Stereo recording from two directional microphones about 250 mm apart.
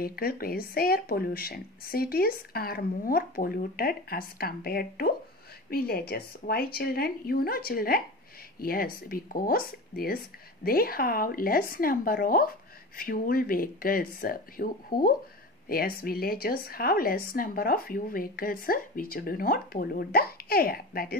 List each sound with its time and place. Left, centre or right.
0.0 s a woman's voice: left